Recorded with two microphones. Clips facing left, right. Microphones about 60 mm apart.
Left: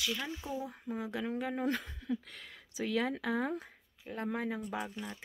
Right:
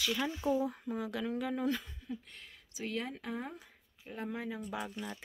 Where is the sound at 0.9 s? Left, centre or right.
Left.